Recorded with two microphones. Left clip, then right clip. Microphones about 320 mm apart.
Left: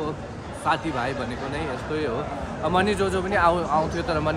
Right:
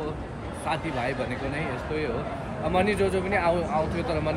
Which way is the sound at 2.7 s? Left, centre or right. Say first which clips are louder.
Left 2 dB; centre.